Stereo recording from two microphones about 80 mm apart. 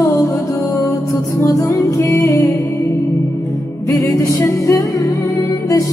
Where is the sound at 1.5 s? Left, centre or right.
Left.